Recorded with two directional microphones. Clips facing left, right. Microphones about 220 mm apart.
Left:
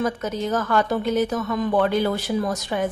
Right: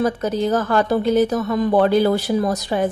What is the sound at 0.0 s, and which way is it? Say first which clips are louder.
A woman's voice: right 5 dB; 35° right (ahead or behind).